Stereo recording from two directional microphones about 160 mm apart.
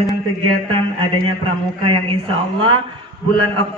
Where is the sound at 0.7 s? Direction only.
30° right (ahead or behind).